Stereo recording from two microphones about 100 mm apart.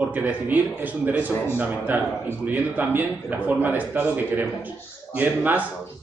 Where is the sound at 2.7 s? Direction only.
15° right (ahead or behind).